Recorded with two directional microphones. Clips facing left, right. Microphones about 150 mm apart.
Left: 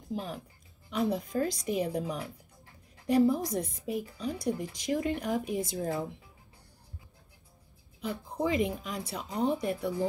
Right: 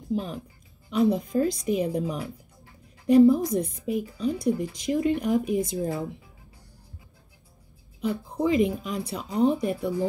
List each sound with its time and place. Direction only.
0.8 s a woman's voice: 20° right (ahead or behind)
8.0 s a woman's voice: 20° right (ahead or behind)